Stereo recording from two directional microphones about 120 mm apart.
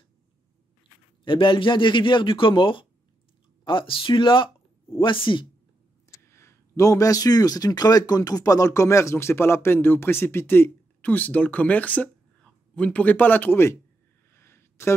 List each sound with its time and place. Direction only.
1.2 s speech: 45° left (ahead or behind)
6.1 s speech: 25° left (ahead or behind)
14.3 s a sound: 20° left (ahead or behind)